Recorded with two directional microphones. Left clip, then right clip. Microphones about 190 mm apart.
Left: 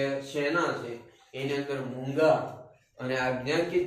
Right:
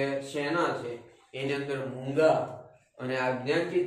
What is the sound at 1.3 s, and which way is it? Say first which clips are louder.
Speech: even; 30° right (ahead or behind).